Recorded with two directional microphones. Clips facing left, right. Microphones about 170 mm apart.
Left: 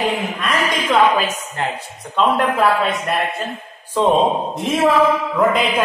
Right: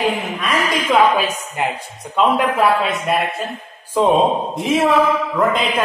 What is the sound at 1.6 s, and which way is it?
Speech, 10° right (ahead or behind).